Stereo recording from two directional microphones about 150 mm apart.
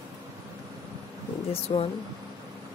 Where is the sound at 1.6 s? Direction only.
40° left (ahead or behind).